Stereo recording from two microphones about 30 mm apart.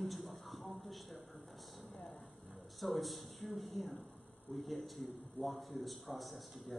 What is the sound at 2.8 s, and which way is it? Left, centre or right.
A man's voice, centre.